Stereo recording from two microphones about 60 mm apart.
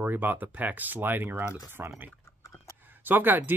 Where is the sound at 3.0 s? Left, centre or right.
Right.